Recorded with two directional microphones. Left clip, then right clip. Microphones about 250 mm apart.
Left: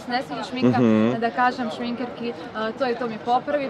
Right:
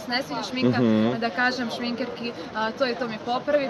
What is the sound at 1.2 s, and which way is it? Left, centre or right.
Speech, centre.